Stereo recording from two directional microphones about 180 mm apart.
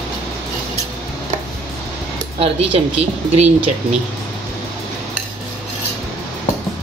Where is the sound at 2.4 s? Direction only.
35° right (ahead or behind).